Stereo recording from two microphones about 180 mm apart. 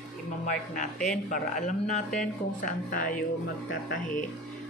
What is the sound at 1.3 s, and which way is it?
Speech, 45° left (ahead or behind).